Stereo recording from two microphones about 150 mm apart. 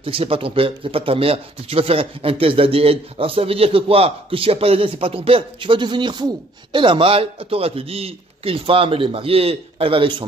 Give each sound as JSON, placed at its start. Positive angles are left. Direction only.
{"t": 0.0, "sound": "speech", "side_deg": -40}